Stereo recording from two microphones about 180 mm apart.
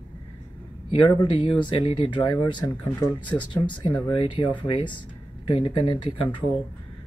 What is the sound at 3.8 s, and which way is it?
Speech, 25° left (ahead or behind).